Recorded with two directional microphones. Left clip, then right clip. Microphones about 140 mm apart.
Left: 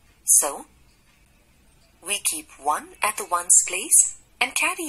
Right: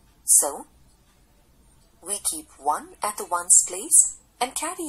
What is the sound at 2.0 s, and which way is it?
Speech, 25° left (ahead or behind).